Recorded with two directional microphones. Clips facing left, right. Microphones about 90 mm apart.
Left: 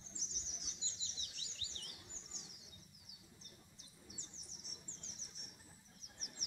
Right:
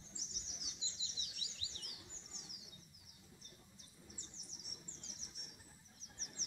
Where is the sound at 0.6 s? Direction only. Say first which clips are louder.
Right 1 dB; 10° right (ahead or behind).